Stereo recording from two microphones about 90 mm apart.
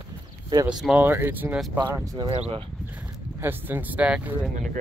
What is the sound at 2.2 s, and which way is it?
Speech, 45° right (ahead or behind).